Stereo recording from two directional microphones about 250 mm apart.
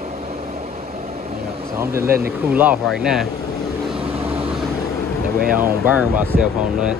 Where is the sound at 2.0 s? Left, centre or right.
Right.